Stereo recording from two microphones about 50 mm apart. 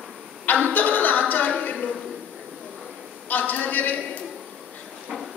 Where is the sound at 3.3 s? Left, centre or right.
Left.